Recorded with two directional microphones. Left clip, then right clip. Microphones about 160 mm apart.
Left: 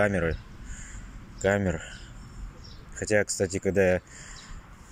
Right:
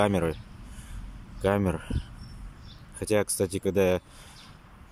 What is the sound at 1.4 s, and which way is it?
Speech, 20° right (ahead or behind).